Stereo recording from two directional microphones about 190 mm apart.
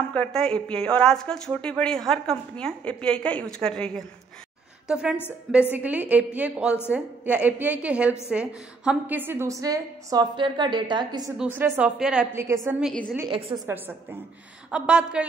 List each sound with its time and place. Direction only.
0.1 s a woman's voice: 5° left (ahead or behind); by 11.3 s 20° right (ahead or behind)
11.3 s a woman's voice: 10° right (ahead or behind)